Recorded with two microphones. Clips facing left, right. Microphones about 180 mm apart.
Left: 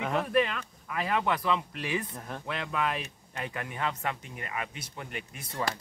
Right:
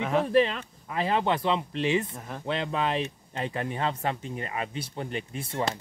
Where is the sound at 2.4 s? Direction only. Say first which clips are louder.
Right 4 dB; 30° right (ahead or behind).